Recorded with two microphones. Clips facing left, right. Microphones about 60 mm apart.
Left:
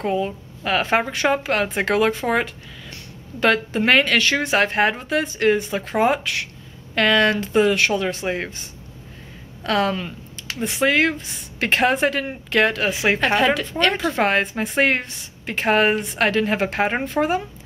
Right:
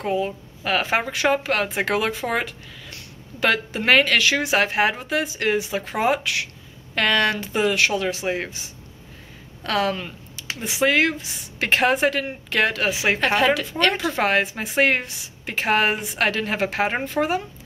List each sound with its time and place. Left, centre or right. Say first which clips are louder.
0.0 s a woman's voice: left 1 dB; centre